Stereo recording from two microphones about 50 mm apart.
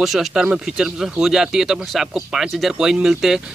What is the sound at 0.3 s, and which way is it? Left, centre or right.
Speech, centre.